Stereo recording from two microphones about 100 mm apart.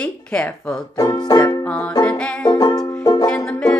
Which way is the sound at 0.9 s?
40° left (ahead or behind).